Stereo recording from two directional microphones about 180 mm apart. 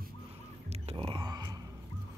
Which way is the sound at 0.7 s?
30° right (ahead or behind).